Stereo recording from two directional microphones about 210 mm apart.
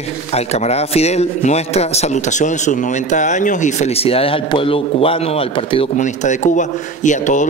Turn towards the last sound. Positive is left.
turn(degrees=35)  # may be behind; listen again after turning